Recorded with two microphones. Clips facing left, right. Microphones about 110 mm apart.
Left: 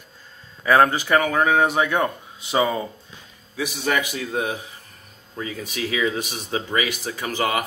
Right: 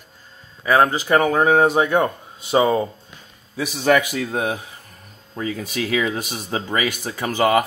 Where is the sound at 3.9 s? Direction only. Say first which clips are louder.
Right 7 dB; 50° right (ahead or behind).